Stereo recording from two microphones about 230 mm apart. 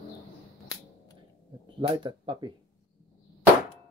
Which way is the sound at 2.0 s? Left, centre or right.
Centre.